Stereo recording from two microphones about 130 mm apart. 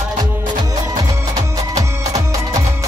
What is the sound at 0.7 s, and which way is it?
Music, 30° right (ahead or behind).